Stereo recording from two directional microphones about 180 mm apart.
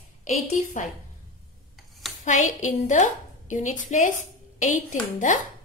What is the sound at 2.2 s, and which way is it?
A woman's voice, 45° left (ahead or behind).